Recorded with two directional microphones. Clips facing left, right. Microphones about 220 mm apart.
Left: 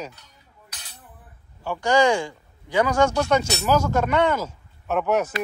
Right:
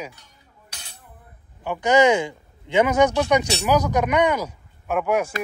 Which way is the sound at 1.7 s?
20° right (ahead or behind).